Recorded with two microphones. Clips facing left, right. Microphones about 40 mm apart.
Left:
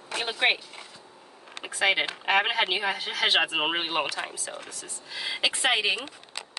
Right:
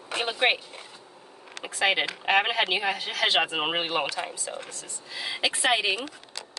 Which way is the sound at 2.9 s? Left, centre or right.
Centre.